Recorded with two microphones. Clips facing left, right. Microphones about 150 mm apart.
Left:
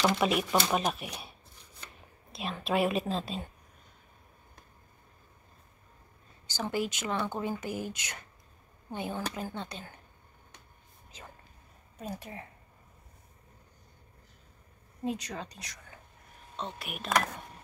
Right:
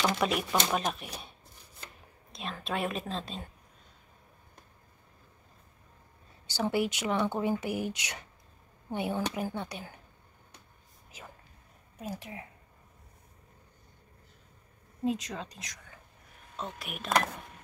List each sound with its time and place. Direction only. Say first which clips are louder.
0.1 s a woman's voice: left 2 dB; centre (ahead or behind)
2.3 s a woman's voice: left 5 dB; 5° left (ahead or behind)
6.4 s speech: right 3 dB; 15° right (ahead or behind)
11.1 s a sound: right 1 dB; 10° right (ahead or behind)
12.0 s a woman's voice: even; 5° right (ahead or behind)
15.0 s a woman's voice: right 3 dB; centre (ahead or behind)